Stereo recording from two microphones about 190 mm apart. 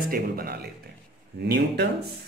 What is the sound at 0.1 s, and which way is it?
Speech, 55° right (ahead or behind).